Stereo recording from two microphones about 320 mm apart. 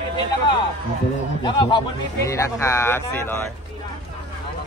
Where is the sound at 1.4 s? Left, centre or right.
Centre.